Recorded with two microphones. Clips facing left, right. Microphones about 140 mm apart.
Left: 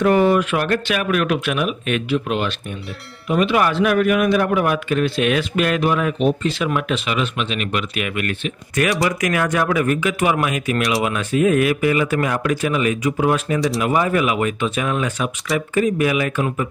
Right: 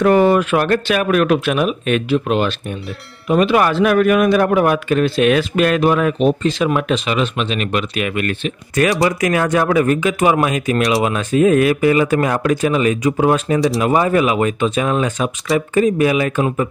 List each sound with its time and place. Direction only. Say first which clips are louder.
0.0 s a man's voice: right 3 dB; 45° right (ahead or behind)